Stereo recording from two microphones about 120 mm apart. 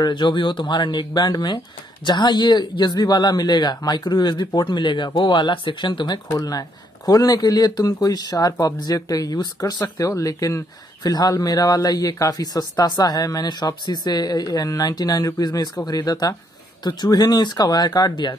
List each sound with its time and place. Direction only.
0.0 s speech: 40° left (ahead or behind)